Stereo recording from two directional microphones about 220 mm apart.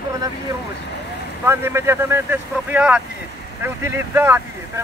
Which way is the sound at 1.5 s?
10° right (ahead or behind).